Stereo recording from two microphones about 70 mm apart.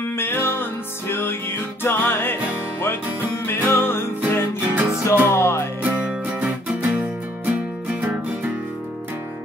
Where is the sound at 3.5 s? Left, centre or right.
Left.